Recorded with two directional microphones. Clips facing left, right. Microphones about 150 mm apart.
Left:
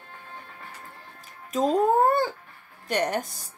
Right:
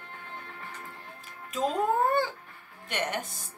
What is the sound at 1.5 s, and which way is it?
Speech, 40° left (ahead or behind).